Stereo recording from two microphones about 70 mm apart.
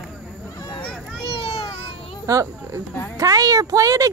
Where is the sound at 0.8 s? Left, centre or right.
Centre.